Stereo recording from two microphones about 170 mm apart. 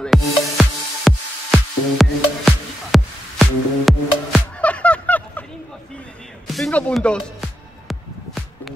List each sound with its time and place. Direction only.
0.0 s music: centre (ahead or behind)
6.4 s music: centre (ahead or behind)